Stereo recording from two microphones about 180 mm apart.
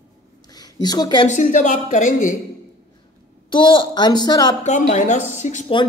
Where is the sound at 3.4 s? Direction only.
25° left (ahead or behind).